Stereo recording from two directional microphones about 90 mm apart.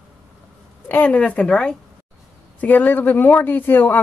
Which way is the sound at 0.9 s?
15° left (ahead or behind).